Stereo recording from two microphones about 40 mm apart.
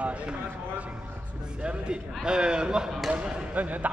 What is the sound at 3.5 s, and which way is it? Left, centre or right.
Speech, right.